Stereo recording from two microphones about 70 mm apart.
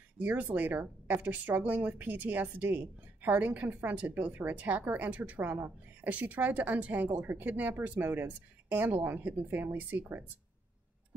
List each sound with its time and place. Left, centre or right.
0.2 s speech: right